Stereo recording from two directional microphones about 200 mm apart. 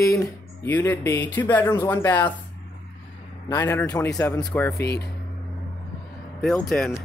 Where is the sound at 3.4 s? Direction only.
15° left (ahead or behind).